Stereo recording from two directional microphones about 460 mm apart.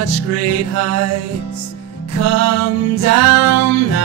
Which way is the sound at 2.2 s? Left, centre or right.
Right.